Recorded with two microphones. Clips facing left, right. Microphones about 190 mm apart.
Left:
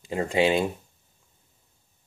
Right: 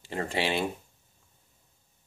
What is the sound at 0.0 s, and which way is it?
Speech, 15° left (ahead or behind).